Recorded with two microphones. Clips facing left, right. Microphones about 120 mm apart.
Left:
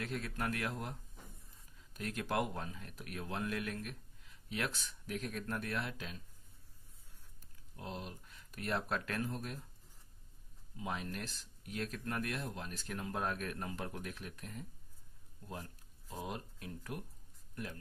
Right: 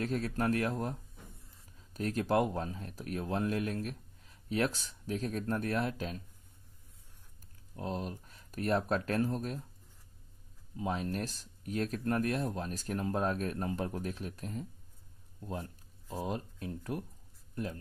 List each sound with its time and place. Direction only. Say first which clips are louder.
0.0 s speech: right 7 dB; 35° right (ahead or behind)
2.0 s speech: right 7 dB; 35° right (ahead or behind)
7.7 s speech: right 7 dB; 40° right (ahead or behind)
10.8 s speech: right 7 dB; 35° right (ahead or behind)
16.1 s speech: right 6 dB; 35° right (ahead or behind)